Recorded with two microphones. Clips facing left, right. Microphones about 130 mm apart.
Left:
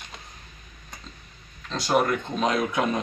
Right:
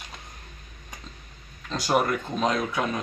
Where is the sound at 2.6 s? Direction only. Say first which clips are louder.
Left 3 dB; 15° left (ahead or behind).